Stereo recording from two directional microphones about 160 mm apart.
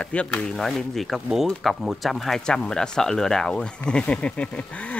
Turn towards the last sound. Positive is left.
turn(degrees=5)  # may be behind; listen again after turning